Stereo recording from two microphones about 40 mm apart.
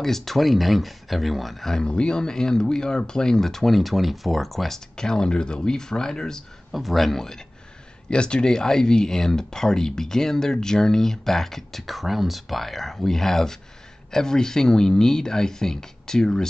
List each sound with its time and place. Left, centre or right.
0.0 s speech: centre
1.7 s speech: centre
6.7 s speech: centre